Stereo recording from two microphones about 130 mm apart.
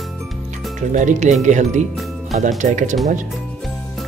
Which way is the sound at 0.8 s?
75° right (ahead or behind).